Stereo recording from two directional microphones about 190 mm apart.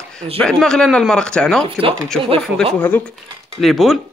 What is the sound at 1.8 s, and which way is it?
Speech, 30° right (ahead or behind).